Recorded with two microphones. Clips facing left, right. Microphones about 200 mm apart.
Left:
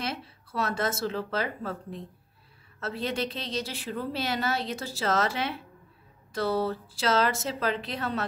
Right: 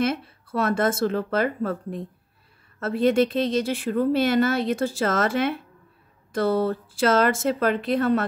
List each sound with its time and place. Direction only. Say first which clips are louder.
0.0 s a woman's voice: right 10 dB; 50° right (ahead or behind)